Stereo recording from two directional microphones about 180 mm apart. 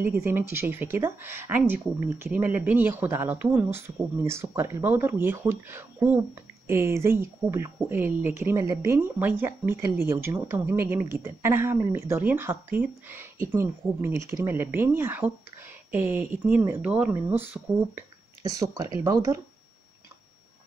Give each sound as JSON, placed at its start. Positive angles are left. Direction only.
{"t": 0.1, "sound": "speech", "side_deg": -10}